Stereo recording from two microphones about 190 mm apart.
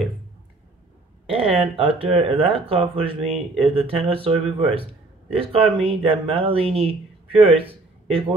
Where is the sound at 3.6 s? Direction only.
30° right (ahead or behind).